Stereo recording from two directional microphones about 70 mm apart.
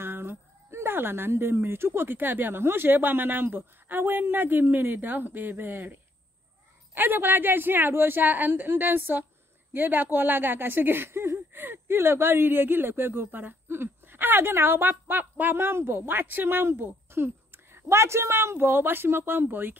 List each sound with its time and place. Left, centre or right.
0.0 s a woman's voice: right